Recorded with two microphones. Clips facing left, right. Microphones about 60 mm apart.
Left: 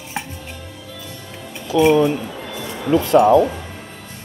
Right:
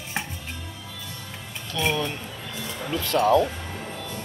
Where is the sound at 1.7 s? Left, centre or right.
Centre.